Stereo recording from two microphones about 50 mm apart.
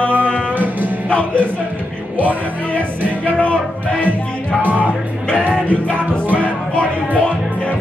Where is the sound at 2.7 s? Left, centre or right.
Left.